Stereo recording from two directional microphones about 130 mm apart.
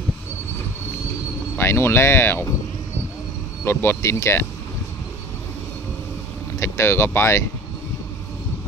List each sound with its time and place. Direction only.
1.6 s speech: 20° left (ahead or behind)
3.6 s speech: 20° left (ahead or behind)
6.6 s speech: 20° left (ahead or behind)